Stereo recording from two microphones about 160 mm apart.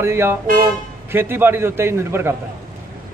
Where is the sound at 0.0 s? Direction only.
15° right (ahead or behind).